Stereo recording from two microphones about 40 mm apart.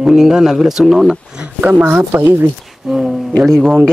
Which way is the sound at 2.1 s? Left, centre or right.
Right.